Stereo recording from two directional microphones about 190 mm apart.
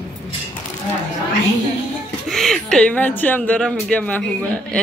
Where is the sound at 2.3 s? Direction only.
Centre (ahead or behind).